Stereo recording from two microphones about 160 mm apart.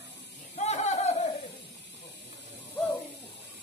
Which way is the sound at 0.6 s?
45° left (ahead or behind).